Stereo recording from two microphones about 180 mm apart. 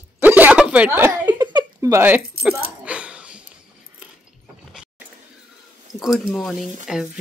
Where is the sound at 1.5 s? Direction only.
15° right (ahead or behind).